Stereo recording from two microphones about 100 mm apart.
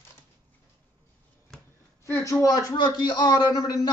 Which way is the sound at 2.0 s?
35° left (ahead or behind).